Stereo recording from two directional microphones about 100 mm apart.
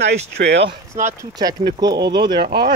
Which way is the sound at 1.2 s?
40° right (ahead or behind).